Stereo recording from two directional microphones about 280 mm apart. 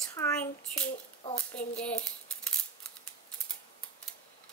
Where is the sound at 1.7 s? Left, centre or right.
Centre.